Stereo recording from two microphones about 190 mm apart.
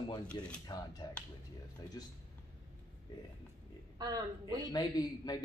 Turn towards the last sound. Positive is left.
turn(degrees=20)  # may be behind; listen again after turning